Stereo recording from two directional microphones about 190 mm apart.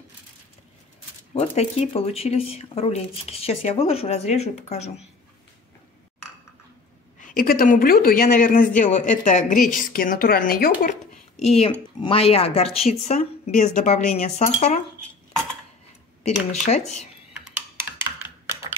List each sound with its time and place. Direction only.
1.3 s speech: 35° left (ahead or behind)
7.2 s speech: 45° left (ahead or behind)
16.3 s speech: 35° left (ahead or behind)
17.5 s computer keyboard: 10° right (ahead or behind)